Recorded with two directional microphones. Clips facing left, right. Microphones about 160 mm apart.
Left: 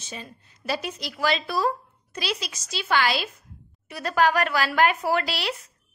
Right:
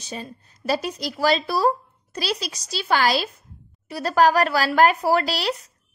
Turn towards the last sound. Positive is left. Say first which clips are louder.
# right 4 dB
turn(degrees=-40)  # may be behind; listen again after turning